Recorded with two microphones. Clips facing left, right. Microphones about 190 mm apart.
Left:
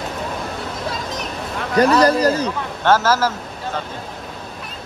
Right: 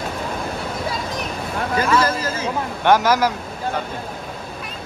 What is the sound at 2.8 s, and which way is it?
A man's voice, 15° right (ahead or behind).